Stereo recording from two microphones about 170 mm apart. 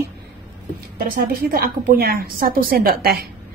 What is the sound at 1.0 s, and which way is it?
A woman's voice, 60° right (ahead or behind).